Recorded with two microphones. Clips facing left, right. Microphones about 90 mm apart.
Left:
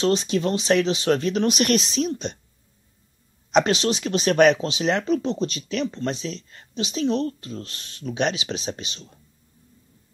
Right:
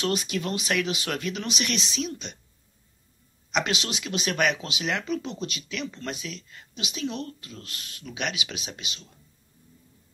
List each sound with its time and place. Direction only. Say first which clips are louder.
0.0 s speech: left 7 dB; 30° left (ahead or behind)
3.5 s speech: left 8 dB; 35° left (ahead or behind)